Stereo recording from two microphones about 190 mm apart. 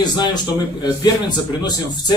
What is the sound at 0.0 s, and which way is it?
A man's voice, 20° left (ahead or behind).